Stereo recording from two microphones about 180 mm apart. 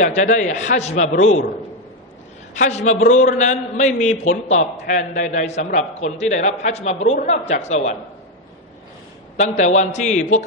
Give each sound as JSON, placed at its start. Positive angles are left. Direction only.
{"t": 0.0, "sound": "a man's voice", "side_deg": 45}
{"t": 2.5, "sound": "a man's voice", "side_deg": 40}
{"t": 9.4, "sound": "a man's voice", "side_deg": 40}